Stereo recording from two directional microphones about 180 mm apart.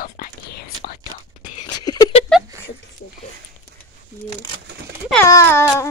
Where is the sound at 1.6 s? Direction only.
20° left (ahead or behind).